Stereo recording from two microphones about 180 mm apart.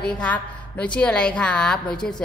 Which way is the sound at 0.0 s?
5° left (ahead or behind).